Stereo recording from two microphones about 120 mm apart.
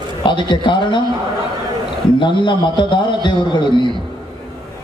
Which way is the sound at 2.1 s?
40° left (ahead or behind).